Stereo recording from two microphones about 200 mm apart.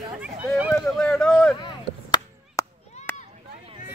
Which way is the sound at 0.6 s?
Centre (ahead or behind).